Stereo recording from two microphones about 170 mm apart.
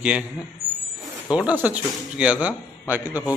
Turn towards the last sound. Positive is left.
turn(degrees=-10)  # may be behind; listen again after turning